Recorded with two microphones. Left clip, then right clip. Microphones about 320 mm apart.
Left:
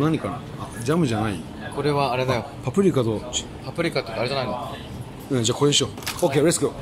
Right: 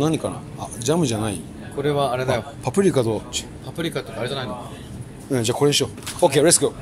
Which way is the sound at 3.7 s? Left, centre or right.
Right.